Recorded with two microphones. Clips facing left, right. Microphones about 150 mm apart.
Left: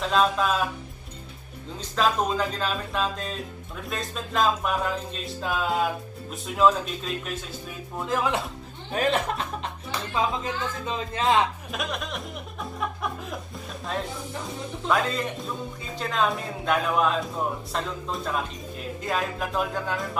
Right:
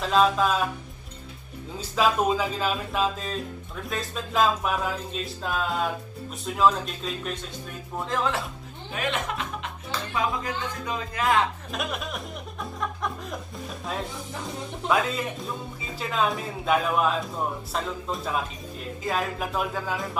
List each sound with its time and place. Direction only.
0.0 s music: centre (ahead or behind)
1.8 s music: 5° right (ahead or behind)
8.9 s speech: 35° left (ahead or behind)
9.8 s speech: 25° left (ahead or behind)
11.7 s speech: centre (ahead or behind)
14.9 s music: 5° right (ahead or behind)